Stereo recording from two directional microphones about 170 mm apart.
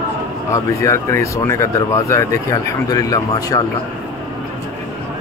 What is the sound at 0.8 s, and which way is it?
Speech, 15° left (ahead or behind).